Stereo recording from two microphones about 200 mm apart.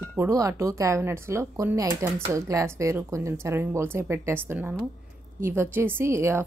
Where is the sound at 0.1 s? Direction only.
15° right (ahead or behind).